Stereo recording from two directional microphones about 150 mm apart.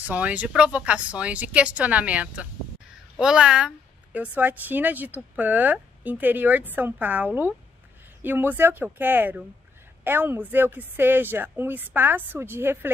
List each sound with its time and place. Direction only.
0.0 s a woman's voice: 10° right (ahead or behind)